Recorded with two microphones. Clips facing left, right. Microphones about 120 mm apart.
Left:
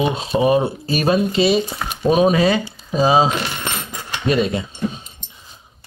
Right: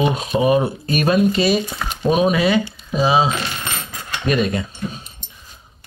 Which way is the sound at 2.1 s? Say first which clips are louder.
Left 1 dB; 35° left (ahead or behind).